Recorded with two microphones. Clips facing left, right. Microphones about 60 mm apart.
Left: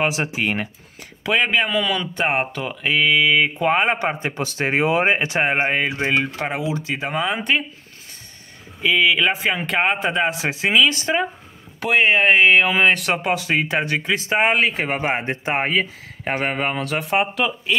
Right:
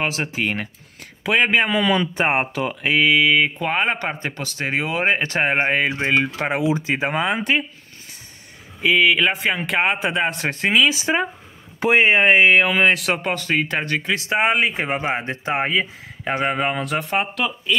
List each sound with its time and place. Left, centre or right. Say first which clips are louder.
0.0 s speech: left 2 dB; centre
1.5 s mantra: right 2 dB; right; by 3.5 s centre
3.5 s speech: left 3 dB; centre
4.4 s speech: left 5 dB; left
5.1 s speech: left 1 dB; centre
5.4 s speech: right 1 dB; centre
6.2 s mantra: right 2 dB; centre
6.6 s speech: right 4 dB; right
7.3 s speech: even; centre
8.8 s speech: right 1 dB; centre
14.7 s mantra: even; centre
15.0 s speech: left 1 dB; centre
16.8 s speech: left 2 dB; centre